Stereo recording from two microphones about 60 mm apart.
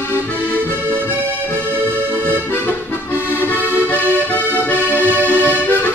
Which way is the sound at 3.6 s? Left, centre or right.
Right.